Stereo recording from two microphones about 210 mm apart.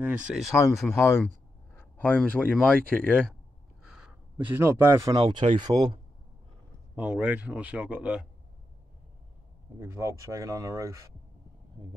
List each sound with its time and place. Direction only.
0.3 s speech: centre (ahead or behind)
0.8 s speech: 15° left (ahead or behind)
3.8 s a sound: 5° right (ahead or behind)
5.2 s speech: 25° right (ahead or behind)
7.0 s speech: 5° right (ahead or behind)
9.8 s speech: 15° right (ahead or behind)